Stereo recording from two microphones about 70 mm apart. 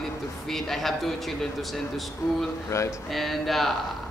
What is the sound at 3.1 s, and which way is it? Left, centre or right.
Speech, centre.